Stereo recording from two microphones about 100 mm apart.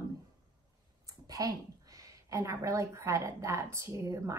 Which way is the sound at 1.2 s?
35° right (ahead or behind).